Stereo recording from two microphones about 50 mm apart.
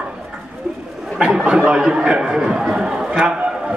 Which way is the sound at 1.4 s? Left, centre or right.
Centre.